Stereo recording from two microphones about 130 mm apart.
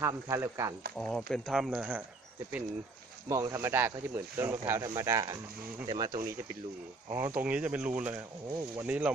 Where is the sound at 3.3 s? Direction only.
25° right (ahead or behind).